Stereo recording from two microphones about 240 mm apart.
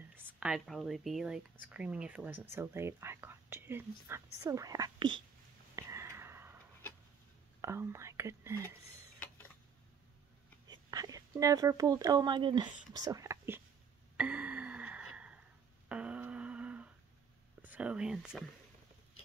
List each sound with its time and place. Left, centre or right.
0.3 s speech: centre
5.8 s a sound: centre
7.6 s speech: centre
10.7 s speech: centre
14.1 s a sound: centre
17.6 s whispering: centre